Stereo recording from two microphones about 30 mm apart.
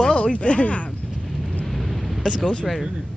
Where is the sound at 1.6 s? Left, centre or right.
Centre.